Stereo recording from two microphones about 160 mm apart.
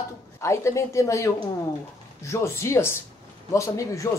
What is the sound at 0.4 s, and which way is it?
Speech, 20° left (ahead or behind).